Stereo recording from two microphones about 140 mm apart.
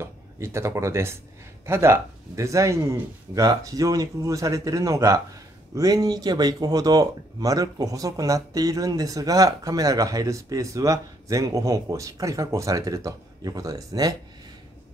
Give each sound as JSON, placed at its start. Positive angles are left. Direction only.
{"t": 0.0, "sound": "speech", "side_deg": -20}